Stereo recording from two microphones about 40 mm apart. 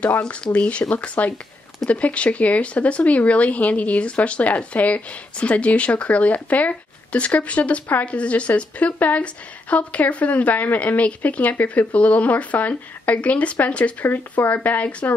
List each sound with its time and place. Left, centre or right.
0.3 s speech: left